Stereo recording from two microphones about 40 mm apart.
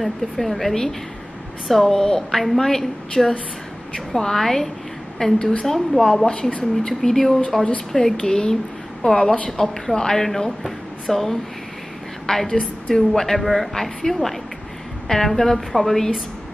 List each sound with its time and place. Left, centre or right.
0.0 s a woman's voice: centre
5.7 s speech: centre
6.2 s a woman's voice: centre